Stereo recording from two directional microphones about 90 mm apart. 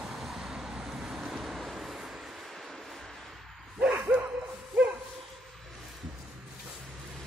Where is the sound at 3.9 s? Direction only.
20° right (ahead or behind).